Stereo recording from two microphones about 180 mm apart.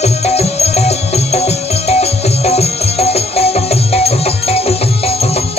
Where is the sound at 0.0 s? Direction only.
35° left (ahead or behind).